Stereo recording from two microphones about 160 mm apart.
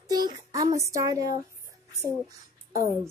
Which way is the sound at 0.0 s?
25° right (ahead or behind).